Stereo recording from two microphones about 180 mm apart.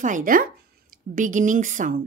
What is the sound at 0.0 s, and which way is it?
A woman's voice, 50° right (ahead or behind).